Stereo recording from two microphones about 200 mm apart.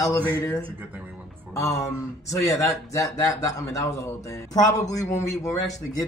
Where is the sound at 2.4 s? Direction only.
15° left (ahead or behind).